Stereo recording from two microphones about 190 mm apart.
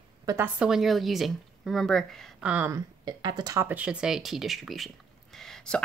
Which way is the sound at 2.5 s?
15° right (ahead or behind).